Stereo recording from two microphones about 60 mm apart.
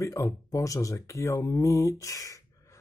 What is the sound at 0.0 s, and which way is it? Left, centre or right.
Speech, left.